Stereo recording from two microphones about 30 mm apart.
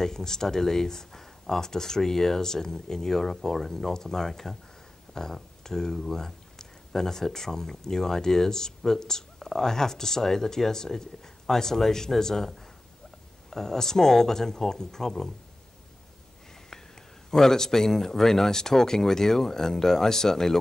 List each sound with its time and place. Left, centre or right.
0.0 s speech: centre
17.3 s speech: centre